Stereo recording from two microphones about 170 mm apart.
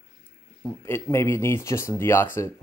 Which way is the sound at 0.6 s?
15° left (ahead or behind).